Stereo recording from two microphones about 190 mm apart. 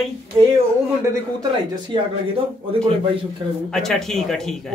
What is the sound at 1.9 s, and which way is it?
Speech, 25° right (ahead or behind).